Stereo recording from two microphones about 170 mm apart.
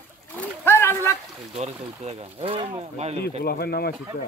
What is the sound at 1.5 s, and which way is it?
Speech, 35° right (ahead or behind).